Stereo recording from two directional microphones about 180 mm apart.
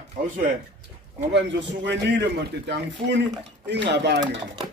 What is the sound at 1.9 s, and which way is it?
A man's voice, 75° right (ahead or behind).